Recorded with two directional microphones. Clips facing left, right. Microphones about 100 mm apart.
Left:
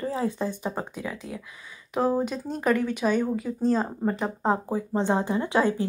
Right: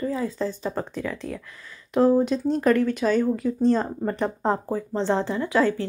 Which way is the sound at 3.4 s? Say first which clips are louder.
Right 3 dB; 5° left (ahead or behind).